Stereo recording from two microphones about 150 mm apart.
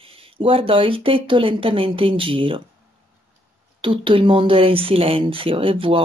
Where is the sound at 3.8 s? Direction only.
35° right (ahead or behind).